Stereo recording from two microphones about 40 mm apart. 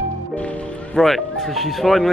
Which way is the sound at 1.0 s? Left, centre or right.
Centre.